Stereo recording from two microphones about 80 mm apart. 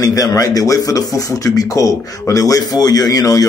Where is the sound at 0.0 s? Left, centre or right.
Left.